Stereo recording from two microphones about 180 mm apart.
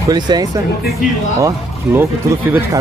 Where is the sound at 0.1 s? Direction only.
20° right (ahead or behind).